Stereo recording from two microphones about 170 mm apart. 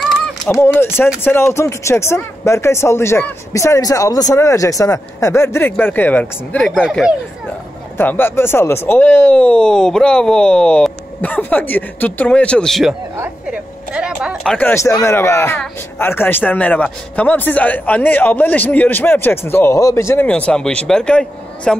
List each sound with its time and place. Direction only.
0.5 s a man's voice: 15° left (ahead or behind)
6.7 s speech: centre (ahead or behind)
8.0 s a man's voice: 10° left (ahead or behind)
13.1 s a sound: 10° right (ahead or behind)
14.7 s a man's voice: 15° left (ahead or behind)